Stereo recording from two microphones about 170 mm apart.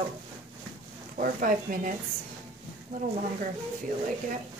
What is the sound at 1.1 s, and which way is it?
Speech, 55° right (ahead or behind).